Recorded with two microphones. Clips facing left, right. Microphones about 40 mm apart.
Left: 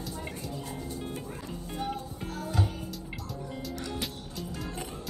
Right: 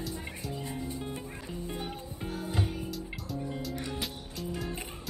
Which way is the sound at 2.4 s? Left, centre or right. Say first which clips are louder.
Left 2 dB; right.